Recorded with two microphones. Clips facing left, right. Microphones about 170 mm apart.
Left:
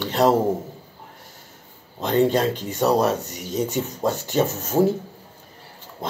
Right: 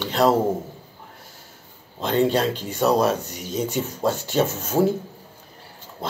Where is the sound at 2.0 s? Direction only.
15° left (ahead or behind).